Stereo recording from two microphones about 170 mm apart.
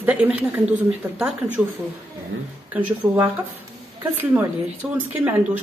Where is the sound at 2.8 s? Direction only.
20° right (ahead or behind).